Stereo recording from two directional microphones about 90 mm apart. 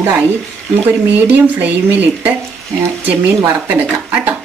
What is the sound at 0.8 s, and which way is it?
Speech, 20° right (ahead or behind).